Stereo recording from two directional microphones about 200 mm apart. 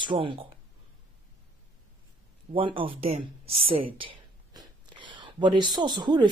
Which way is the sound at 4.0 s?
20° right (ahead or behind).